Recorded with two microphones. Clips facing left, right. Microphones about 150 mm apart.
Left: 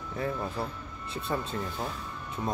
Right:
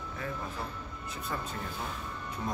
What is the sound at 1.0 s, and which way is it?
Speech, 30° left (ahead or behind).